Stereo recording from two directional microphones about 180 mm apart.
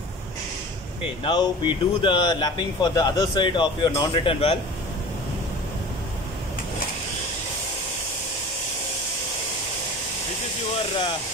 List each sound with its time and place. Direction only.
1.2 s speech: 25° left (ahead or behind)